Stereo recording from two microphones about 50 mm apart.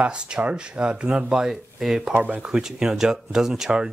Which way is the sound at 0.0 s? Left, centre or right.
Centre.